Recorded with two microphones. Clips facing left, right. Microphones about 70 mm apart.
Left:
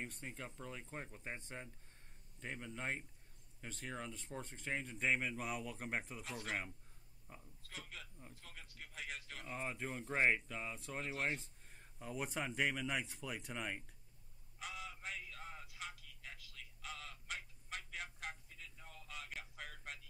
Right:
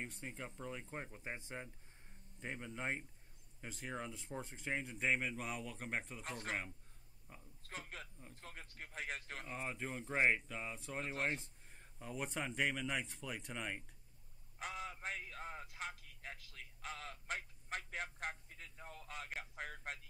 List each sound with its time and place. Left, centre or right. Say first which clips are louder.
0.0 s speech: right 1 dB; centre
7.3 s speech: left 1 dB; centre
7.6 s a sound: right 4 dB; right
8.4 s speech: right 6 dB; right
9.5 s speech: left 1 dB; centre
14.6 s a sound: right 4 dB; right